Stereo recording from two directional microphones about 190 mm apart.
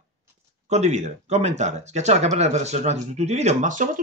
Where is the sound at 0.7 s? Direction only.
35° right (ahead or behind).